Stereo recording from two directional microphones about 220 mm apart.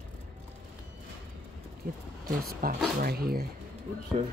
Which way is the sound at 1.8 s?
40° right (ahead or behind).